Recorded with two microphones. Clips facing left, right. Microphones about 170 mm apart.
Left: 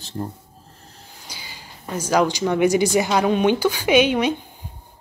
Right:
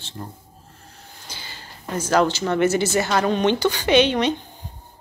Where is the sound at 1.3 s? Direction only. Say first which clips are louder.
Right 1 dB; 10° left (ahead or behind).